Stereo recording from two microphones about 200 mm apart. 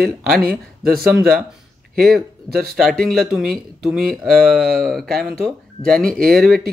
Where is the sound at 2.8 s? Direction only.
Centre (ahead or behind).